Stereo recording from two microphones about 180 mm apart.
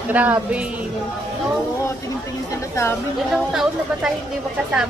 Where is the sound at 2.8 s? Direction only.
15° left (ahead or behind).